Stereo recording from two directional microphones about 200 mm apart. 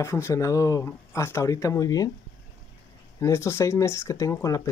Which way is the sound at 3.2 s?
15° left (ahead or behind).